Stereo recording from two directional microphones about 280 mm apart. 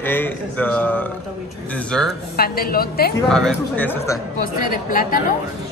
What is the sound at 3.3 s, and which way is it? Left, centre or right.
Speech, centre.